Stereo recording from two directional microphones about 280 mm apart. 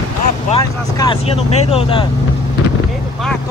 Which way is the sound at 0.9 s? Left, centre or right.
Centre.